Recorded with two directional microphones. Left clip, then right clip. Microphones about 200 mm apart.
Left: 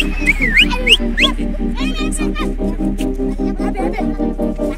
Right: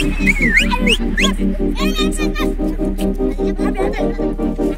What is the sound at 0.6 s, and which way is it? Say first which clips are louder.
Music: left 3 dB; 25° right (ahead or behind).